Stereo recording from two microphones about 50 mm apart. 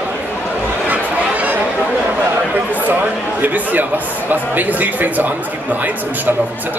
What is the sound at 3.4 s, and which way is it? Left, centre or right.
Speech, right.